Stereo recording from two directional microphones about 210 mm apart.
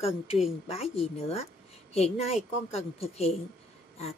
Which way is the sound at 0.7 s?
30° left (ahead or behind).